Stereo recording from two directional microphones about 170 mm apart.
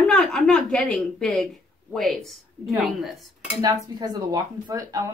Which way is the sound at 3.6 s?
25° right (ahead or behind).